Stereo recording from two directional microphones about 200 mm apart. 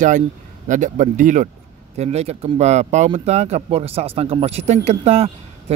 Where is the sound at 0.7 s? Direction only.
40° right (ahead or behind).